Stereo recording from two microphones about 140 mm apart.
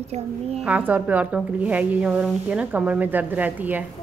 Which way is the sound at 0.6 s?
10° right (ahead or behind).